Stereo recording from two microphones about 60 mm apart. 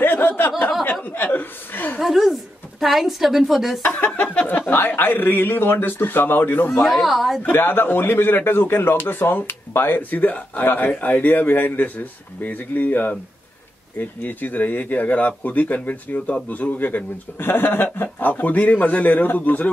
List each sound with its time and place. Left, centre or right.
0.0 s a sound: left
1.0 s chuckle: left
2.0 s a sound: centre
3.8 s speech: left
4.6 s speech: left
6.8 s speech: centre
7.4 s speech: left